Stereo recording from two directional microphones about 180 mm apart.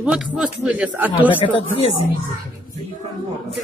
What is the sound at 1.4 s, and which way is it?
Speech, 35° left (ahead or behind).